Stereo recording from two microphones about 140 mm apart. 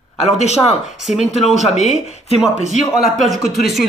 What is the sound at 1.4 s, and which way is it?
Speech, 55° left (ahead or behind).